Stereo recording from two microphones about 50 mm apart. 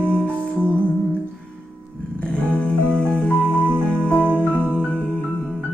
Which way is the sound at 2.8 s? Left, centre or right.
Right.